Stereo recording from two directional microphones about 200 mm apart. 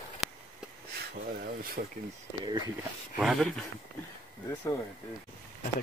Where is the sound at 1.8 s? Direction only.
50° right (ahead or behind).